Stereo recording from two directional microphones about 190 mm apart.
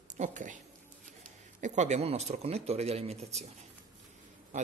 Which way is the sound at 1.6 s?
40° right (ahead or behind).